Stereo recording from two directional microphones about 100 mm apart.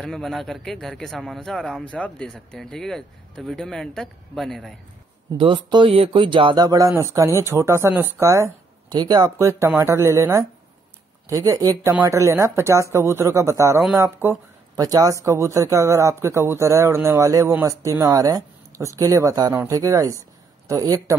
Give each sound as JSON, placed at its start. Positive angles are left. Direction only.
{"t": 0.0, "sound": "speech", "side_deg": 5}
{"t": 5.4, "sound": "speech", "side_deg": -55}
{"t": 6.6, "sound": "a man's voice", "side_deg": -35}
{"t": 8.9, "sound": "speech", "side_deg": -45}
{"t": 9.4, "sound": "a man's voice", "side_deg": -30}
{"t": 14.8, "sound": "a man's voice", "side_deg": -35}